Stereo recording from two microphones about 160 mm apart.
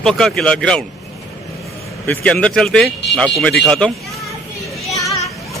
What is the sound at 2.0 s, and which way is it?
Speech, 5° left (ahead or behind).